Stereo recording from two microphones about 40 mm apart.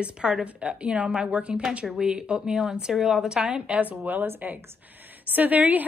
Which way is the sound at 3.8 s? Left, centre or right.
Right.